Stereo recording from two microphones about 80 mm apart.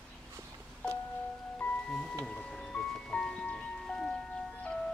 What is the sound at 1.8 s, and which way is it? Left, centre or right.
Music, centre.